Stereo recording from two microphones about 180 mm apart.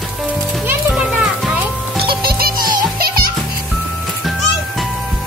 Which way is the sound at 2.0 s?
55° right (ahead or behind).